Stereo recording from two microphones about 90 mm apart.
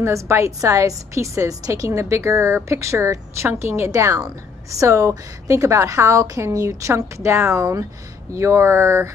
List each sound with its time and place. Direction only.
0.0 s a woman's voice: 30° right (ahead or behind)